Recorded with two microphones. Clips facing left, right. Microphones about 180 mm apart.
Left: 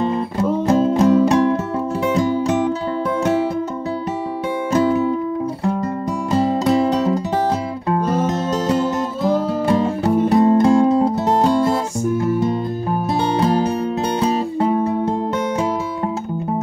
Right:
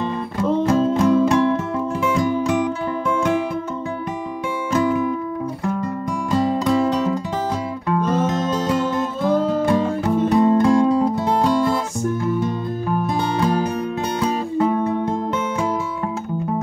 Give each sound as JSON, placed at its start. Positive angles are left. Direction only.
{"t": 0.7, "sound": "music", "side_deg": 30}
{"t": 4.7, "sound": "music", "side_deg": 30}
{"t": 9.7, "sound": "music", "side_deg": 35}
{"t": 13.1, "sound": "music", "side_deg": 35}